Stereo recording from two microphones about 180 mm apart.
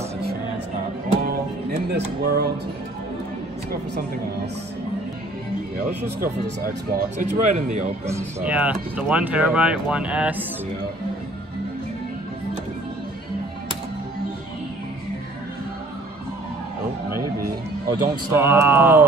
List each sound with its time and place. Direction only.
1.2 s music: 60° right (ahead or behind)
2.2 s speech: 60° right (ahead or behind)
6.2 s speech: 55° right (ahead or behind)
8.1 s speech: 15° right (ahead or behind)
17.8 s speech: 15° right (ahead or behind)